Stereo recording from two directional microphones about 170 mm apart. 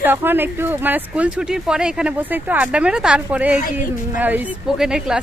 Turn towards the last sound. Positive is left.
turn(degrees=-5)  # may be behind; listen again after turning